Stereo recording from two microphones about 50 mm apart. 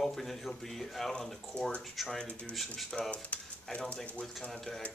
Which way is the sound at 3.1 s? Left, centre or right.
Left.